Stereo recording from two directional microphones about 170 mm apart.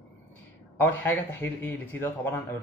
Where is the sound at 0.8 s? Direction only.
10° left (ahead or behind).